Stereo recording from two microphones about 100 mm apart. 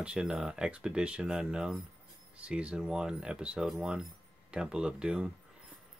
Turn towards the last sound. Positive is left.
turn(degrees=-10)  # may be behind; listen again after turning